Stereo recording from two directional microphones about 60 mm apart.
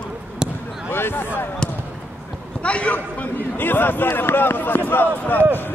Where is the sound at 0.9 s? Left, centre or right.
Left.